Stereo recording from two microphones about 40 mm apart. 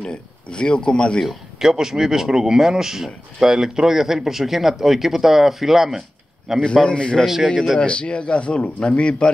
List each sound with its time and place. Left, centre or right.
0.0 s a man's voice: left
1.2 s speech: centre
6.6 s a man's voice: left